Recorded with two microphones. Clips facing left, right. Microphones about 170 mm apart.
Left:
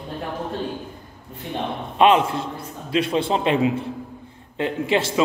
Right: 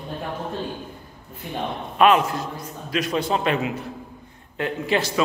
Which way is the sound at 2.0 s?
25° left (ahead or behind).